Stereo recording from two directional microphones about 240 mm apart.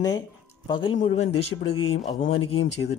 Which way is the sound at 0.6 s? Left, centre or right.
Centre.